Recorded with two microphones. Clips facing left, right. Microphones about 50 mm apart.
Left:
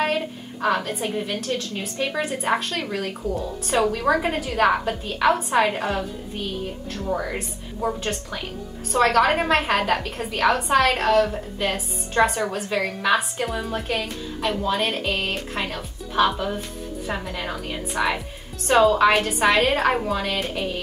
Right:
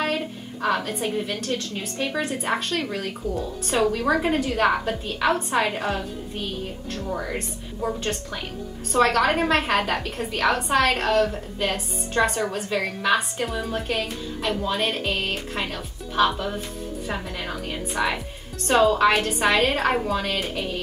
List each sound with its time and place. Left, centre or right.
0.0 s a woman's voice: centre